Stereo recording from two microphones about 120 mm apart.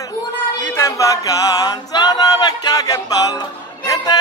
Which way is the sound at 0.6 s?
20° left (ahead or behind).